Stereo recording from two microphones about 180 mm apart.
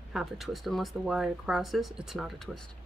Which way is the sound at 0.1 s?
Centre (ahead or behind).